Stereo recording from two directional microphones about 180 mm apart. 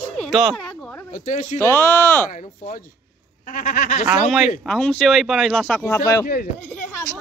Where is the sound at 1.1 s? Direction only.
45° left (ahead or behind).